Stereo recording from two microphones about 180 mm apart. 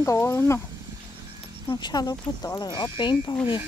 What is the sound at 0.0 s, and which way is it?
Speech, 15° left (ahead or behind).